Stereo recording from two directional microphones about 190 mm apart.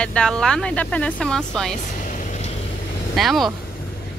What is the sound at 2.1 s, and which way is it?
Vehicle, 40° left (ahead or behind).